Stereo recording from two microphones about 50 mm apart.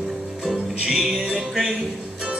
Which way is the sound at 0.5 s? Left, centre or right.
Centre.